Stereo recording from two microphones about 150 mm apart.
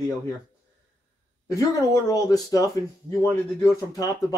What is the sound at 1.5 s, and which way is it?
A man's voice, 25° left (ahead or behind).